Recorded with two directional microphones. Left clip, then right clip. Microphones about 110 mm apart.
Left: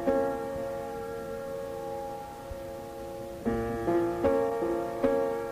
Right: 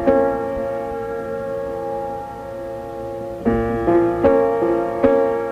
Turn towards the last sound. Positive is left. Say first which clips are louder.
# right 11 dB
turn(degrees=35)  # may be behind; listen again after turning